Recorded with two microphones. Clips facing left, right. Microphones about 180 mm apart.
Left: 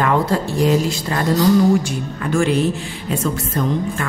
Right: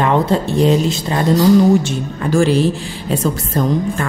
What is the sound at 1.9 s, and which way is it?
Speech, 35° right (ahead or behind).